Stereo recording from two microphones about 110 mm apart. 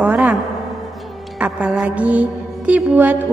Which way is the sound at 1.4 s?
10° right (ahead or behind).